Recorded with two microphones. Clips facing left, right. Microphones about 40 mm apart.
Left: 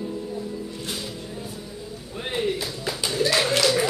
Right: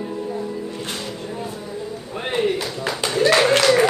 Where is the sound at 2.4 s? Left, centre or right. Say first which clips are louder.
Right 5 dB; right.